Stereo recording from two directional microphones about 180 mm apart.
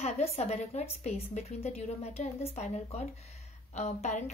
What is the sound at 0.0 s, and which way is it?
A woman's voice, 35° left (ahead or behind).